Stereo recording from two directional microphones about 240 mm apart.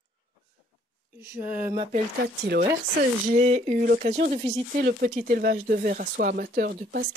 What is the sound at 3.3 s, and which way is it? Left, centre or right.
Speech, right.